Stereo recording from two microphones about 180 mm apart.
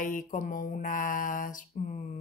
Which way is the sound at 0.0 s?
45° left (ahead or behind).